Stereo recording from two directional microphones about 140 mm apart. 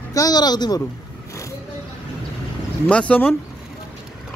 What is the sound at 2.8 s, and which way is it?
Speech, 10° left (ahead or behind).